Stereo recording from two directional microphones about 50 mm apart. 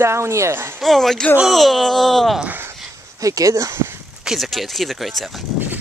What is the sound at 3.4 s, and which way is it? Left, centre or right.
Speech, right.